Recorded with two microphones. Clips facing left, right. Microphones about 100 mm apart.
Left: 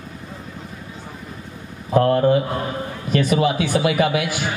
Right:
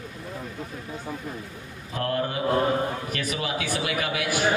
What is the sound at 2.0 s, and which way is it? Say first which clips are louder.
A man's voice: left 7 dB; 30° left (ahead or behind).